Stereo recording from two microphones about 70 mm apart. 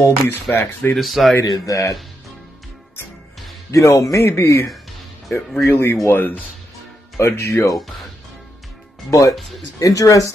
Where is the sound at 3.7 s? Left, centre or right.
Left.